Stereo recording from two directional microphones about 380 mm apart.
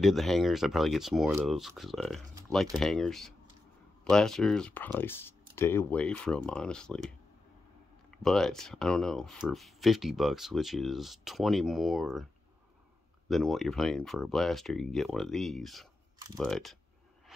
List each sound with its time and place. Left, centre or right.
0.0 s speech: centre
13.3 s speech: centre